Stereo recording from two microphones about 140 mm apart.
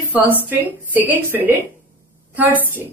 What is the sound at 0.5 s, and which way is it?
A woman's voice, 15° right (ahead or behind).